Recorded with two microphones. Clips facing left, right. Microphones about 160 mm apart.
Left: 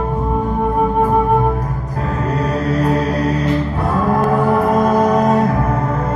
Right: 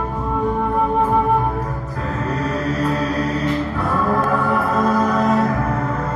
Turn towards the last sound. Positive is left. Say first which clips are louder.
# left 4 dB
turn(degrees=40)  # may be behind; listen again after turning